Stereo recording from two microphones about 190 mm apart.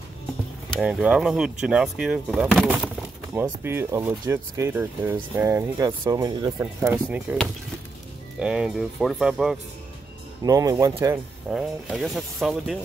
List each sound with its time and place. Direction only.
0.7 s speech: centre (ahead or behind)
3.4 s speech: 15° right (ahead or behind)
8.4 s speech: 5° right (ahead or behind)
10.4 s speech: 20° right (ahead or behind)
11.5 s speech: centre (ahead or behind)